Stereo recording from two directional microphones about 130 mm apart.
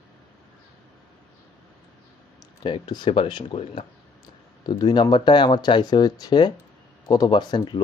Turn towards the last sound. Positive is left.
turn(degrees=35)  # may be behind; listen again after turning